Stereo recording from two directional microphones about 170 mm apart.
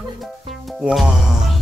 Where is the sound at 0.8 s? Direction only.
5° right (ahead or behind).